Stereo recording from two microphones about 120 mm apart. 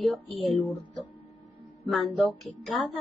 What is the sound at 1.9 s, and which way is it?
Speech, 10° left (ahead or behind).